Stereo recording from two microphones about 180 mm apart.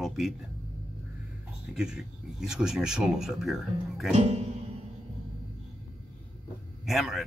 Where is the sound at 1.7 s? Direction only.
5° right (ahead or behind).